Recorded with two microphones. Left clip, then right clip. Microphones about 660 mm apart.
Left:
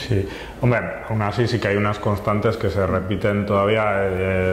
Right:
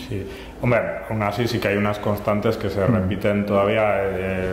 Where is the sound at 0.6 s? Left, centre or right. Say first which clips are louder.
Right 1 dB; centre.